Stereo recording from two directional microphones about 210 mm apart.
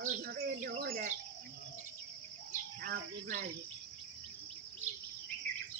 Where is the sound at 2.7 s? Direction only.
45° right (ahead or behind).